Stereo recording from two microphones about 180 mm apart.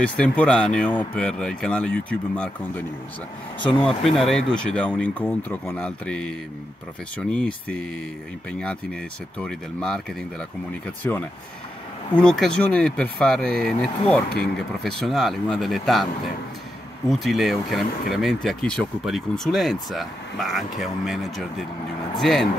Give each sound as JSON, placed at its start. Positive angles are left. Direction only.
{"t": 0.0, "sound": "speech", "side_deg": 5}
{"t": 3.8, "sound": "speech", "side_deg": 0}
{"t": 11.0, "sound": "speech", "side_deg": 10}
{"t": 17.1, "sound": "speech", "side_deg": 0}